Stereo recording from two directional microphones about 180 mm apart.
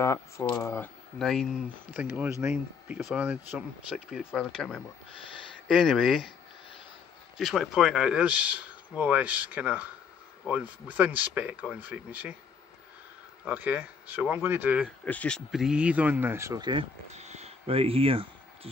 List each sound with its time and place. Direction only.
0.0 s speech: 15° left (ahead or behind)
1.2 s speech: centre (ahead or behind)
7.3 s speech: centre (ahead or behind)
13.5 s speech: 10° right (ahead or behind)
15.0 s speech: 5° left (ahead or behind); by 16.8 s 25° right (ahead or behind)
17.1 s a sound: 40° right (ahead or behind)